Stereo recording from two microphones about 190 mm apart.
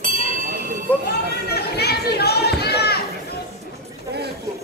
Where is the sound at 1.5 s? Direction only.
55° left (ahead or behind).